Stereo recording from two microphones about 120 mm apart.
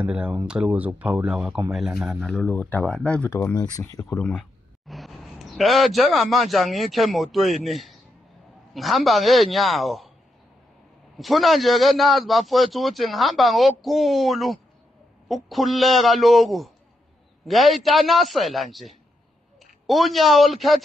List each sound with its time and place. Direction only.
0.0 s speech: 10° right (ahead or behind)
2.2 s speech: 10° left (ahead or behind)
3.3 s speech: 25° left (ahead or behind)
4.2 s a man's voice: 5° left (ahead or behind)
11.1 s a man's voice: centre (ahead or behind)